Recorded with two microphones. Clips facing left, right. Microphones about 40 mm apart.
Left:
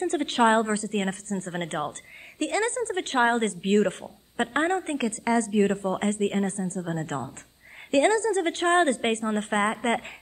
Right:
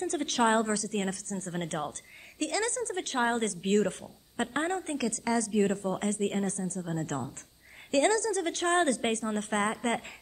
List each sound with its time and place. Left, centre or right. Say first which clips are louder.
0.0 s a woman's voice: left 5 dB; left